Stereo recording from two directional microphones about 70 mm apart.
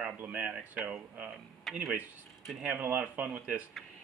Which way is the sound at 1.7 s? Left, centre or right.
Centre.